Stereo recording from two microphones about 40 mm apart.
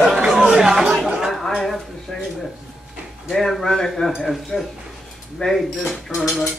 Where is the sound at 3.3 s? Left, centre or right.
Centre.